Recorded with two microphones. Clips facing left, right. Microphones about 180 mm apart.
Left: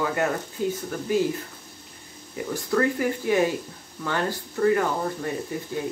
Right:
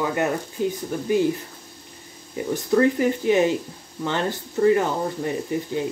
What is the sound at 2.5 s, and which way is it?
Speech, 20° right (ahead or behind).